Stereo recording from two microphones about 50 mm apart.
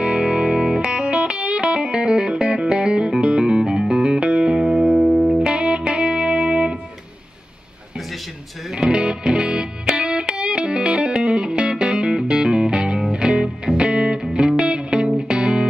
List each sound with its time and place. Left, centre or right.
0.0 s music: centre
5.4 s music: centre
8.7 s music: centre